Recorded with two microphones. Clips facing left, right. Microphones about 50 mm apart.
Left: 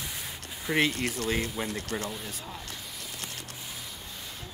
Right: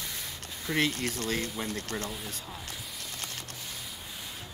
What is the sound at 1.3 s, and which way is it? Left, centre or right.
Speech, centre.